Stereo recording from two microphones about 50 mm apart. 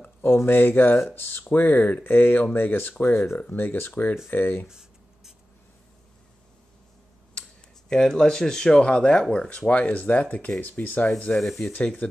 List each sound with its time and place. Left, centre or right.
0.0 s a sound: left
0.5 s speech: left
4.6 s a sound: centre
7.9 s speech: centre
9.7 s speech: left
11.3 s speech: centre
12.0 s speech: left